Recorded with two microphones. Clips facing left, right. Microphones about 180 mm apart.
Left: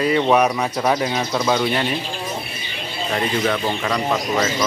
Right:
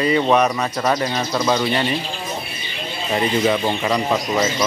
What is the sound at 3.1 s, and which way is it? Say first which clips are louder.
Speech: right 3 dB; 10° right (ahead or behind).